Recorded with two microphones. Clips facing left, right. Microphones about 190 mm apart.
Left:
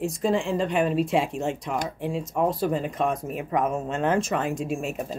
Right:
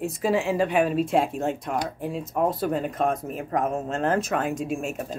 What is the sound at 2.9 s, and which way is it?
Speech, 50° right (ahead or behind).